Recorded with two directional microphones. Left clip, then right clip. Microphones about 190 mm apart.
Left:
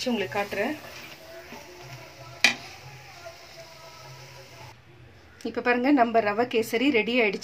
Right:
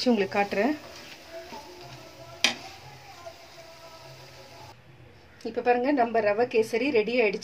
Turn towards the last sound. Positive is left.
turn(degrees=30)  # may be behind; listen again after turning